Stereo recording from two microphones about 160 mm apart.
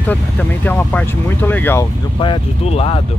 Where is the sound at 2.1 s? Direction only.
30° left (ahead or behind).